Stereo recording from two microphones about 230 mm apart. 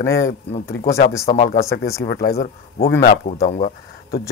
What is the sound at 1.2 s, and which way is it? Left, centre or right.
Speech, left.